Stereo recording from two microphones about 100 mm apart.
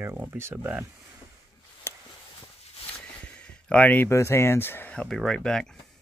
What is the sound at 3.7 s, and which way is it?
Speech, 15° left (ahead or behind).